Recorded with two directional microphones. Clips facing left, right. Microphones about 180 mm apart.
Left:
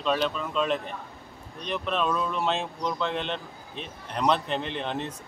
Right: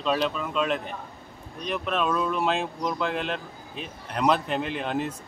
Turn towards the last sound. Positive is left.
turn(degrees=-5)  # may be behind; listen again after turning